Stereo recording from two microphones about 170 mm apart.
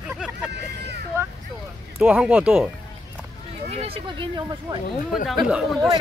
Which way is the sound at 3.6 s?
35° right (ahead or behind).